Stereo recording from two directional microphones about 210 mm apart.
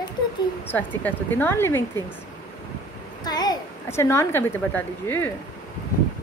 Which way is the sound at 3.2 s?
20° left (ahead or behind).